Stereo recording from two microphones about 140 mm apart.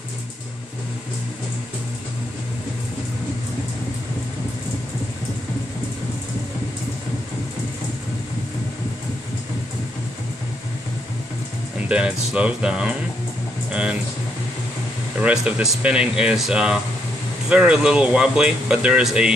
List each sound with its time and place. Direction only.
11.9 s speech: 5° right (ahead or behind)
13.7 s a sound: 5° right (ahead or behind)
15.4 s speech: 10° right (ahead or behind)